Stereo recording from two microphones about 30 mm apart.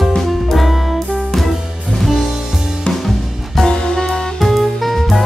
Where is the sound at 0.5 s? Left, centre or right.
Centre.